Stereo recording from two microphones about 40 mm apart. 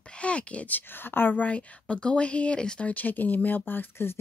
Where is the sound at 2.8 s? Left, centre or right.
Left.